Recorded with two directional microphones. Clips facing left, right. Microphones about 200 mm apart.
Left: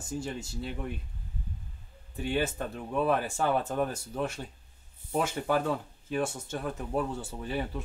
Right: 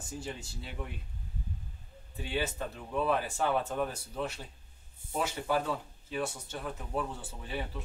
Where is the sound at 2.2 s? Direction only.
50° left (ahead or behind).